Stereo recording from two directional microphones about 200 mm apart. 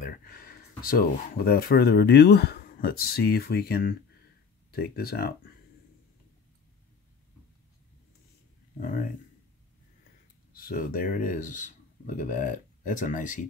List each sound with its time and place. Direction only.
0.0 s speech: 45° left (ahead or behind)
8.7 s speech: 40° left (ahead or behind)
10.5 s speech: 45° left (ahead or behind)